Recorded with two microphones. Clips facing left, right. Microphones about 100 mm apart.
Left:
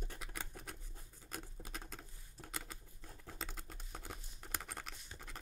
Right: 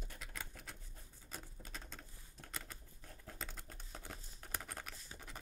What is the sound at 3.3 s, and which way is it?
Typing, centre (ahead or behind).